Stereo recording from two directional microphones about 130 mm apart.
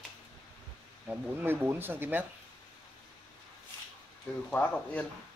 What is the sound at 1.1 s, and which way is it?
Speech, 10° right (ahead or behind).